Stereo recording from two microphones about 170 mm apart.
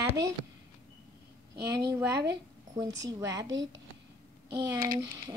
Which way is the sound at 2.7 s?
25° right (ahead or behind).